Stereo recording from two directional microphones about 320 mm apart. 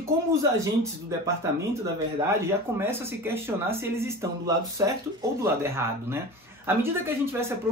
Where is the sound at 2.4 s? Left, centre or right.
Centre.